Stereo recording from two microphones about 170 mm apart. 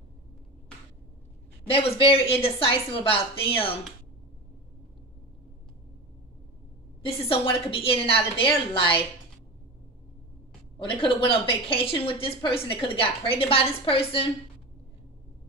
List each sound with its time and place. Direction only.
1.7 s speech: 35° left (ahead or behind)
7.1 s speech: 35° left (ahead or behind)
10.8 s speech: 30° left (ahead or behind)